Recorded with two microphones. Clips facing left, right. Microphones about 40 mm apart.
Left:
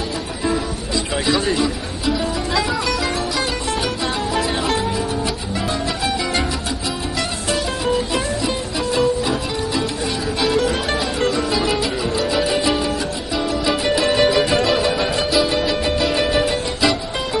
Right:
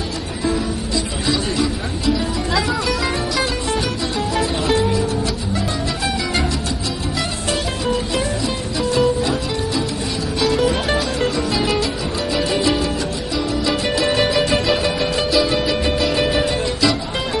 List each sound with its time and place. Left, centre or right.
1.2 s music: centre
8.7 s music: centre
10.4 s music: centre